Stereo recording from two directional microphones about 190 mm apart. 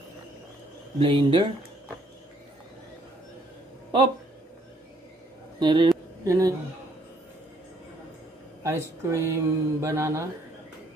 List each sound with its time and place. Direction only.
0.9 s speech: 25° right (ahead or behind)
5.6 s a sound: 25° right (ahead or behind)
8.6 s speech: 15° right (ahead or behind)